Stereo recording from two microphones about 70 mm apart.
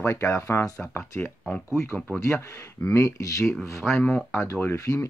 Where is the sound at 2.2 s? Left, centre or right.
Left.